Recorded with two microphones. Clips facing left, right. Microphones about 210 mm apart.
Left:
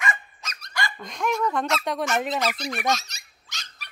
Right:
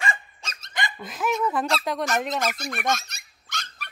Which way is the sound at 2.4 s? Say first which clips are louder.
Left 1 dB; 50° right (ahead or behind).